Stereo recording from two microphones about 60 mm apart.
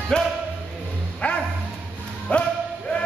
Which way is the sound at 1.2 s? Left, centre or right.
Left.